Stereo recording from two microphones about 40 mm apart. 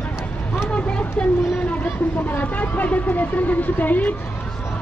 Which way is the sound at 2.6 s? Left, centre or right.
Left.